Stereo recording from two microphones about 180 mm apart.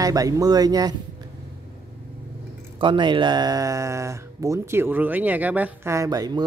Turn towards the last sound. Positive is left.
turn(degrees=-20)  # may be behind; listen again after turning